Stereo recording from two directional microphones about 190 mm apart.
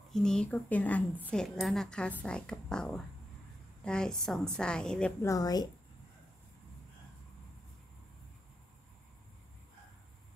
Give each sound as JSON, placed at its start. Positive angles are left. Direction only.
{"t": 0.1, "sound": "a woman's voice", "side_deg": 5}
{"t": 5.2, "sound": "a woman's voice", "side_deg": 20}